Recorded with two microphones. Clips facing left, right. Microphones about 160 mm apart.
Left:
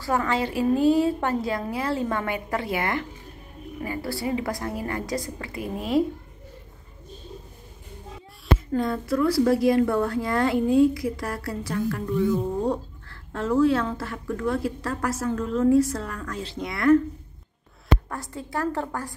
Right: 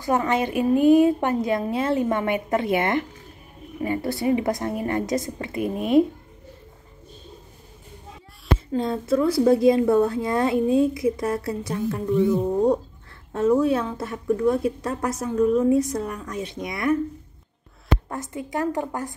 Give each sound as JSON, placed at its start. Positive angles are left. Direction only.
{"t": 0.0, "sound": "a woman's voice", "side_deg": -20}
{"t": 8.7, "sound": "a woman's voice", "side_deg": -25}
{"t": 18.0, "sound": "a woman's voice", "side_deg": -20}